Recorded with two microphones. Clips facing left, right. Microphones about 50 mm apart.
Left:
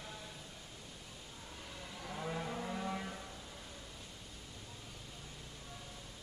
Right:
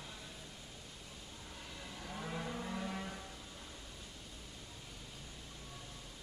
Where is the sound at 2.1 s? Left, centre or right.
Centre.